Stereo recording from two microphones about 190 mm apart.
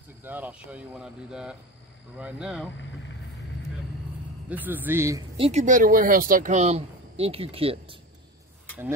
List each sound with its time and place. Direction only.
0.2 s speech: 10° right (ahead or behind)
4.5 s speech: 10° right (ahead or behind)
5.4 s speech: 35° right (ahead or behind)